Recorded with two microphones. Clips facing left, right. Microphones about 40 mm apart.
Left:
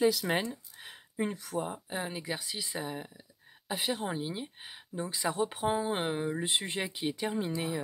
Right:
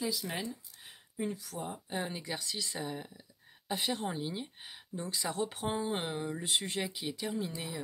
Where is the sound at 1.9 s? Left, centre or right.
Centre.